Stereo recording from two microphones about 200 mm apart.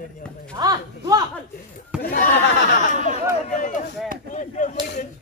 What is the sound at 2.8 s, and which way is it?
Speech, 40° left (ahead or behind).